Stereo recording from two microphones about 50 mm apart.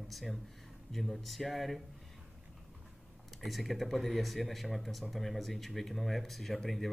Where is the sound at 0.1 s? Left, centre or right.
Centre.